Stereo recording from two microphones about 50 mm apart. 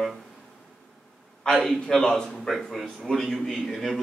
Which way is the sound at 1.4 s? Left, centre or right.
Centre.